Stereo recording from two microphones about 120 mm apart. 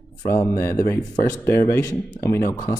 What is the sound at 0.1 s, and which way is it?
Speech, 30° left (ahead or behind).